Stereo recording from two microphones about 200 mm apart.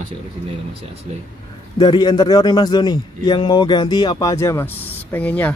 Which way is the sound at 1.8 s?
20° left (ahead or behind).